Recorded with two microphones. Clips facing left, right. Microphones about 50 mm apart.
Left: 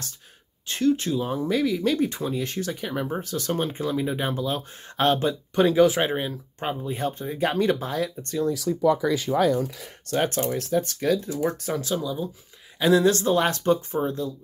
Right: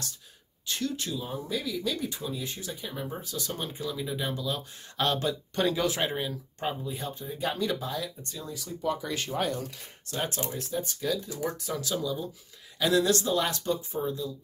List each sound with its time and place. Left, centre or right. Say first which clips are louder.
0.7 s speech: left 10 dB; left
1.2 s speech: left 9 dB; left
5.5 s speech: left 10 dB; centre
6.9 s speech: left 8 dB; left
7.2 s speech: left 7 dB; left
10.1 s speech: left 9 dB; left
10.5 s speech: left 8 dB; left
11.9 s speech: left 4 dB; centre; by 14.3 s left